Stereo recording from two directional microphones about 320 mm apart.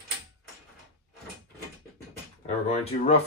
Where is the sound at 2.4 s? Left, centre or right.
Centre.